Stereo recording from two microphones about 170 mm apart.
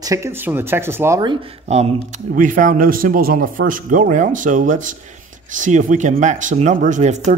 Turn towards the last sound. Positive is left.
turn(degrees=-45)  # may be behind; listen again after turning